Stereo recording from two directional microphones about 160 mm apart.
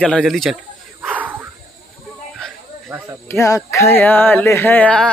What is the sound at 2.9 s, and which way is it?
Speech, 20° right (ahead or behind).